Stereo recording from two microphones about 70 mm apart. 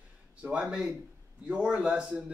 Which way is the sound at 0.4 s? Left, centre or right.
Centre.